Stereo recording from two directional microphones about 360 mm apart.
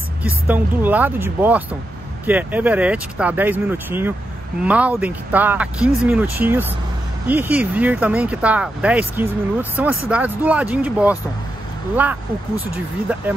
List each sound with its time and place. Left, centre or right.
0.2 s speech: centre